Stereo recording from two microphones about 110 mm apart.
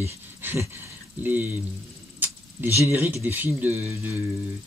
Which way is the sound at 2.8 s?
20° right (ahead or behind).